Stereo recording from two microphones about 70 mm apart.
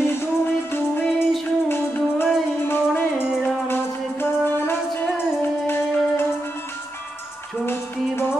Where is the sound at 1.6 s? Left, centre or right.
Left.